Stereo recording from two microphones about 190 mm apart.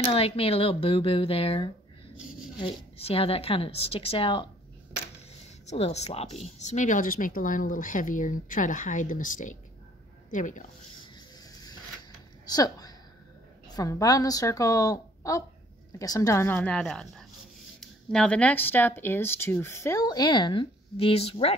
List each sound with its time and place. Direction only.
0.1 s speech: 30° left (ahead or behind)
5.7 s a woman's voice: 35° left (ahead or behind)
12.4 s speech: 20° left (ahead or behind)